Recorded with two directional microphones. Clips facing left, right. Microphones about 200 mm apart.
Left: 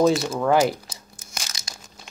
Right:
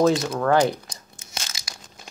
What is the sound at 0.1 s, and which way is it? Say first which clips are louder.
Speech: even; centre (ahead or behind).